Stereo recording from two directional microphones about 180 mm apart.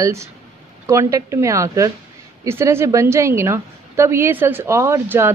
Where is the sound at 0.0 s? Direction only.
15° right (ahead or behind).